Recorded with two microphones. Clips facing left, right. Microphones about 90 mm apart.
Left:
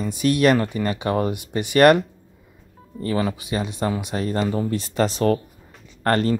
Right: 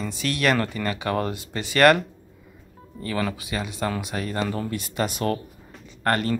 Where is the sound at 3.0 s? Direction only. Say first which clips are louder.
Left 4 dB; 30° left (ahead or behind).